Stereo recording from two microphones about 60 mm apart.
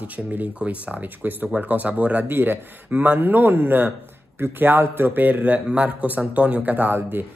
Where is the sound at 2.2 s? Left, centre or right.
Right.